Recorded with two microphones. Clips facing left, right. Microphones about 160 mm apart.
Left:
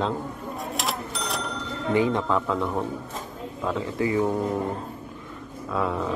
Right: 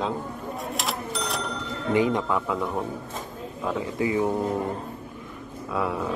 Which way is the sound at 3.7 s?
20° right (ahead or behind).